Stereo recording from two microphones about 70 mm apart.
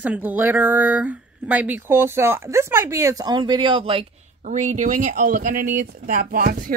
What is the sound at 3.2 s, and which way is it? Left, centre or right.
Speech, right.